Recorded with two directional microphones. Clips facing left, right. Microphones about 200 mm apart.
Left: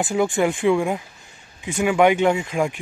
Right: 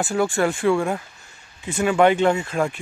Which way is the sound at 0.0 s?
15° left (ahead or behind).